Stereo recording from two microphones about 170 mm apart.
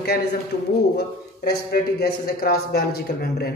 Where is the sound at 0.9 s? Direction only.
65° left (ahead or behind).